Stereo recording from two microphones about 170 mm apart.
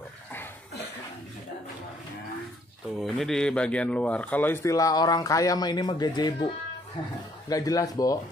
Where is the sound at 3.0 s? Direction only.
Centre (ahead or behind); by 8.2 s 20° left (ahead or behind).